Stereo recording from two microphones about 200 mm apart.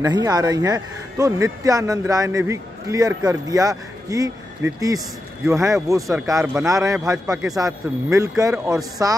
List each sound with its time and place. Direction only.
0.0 s speech: 20° right (ahead or behind)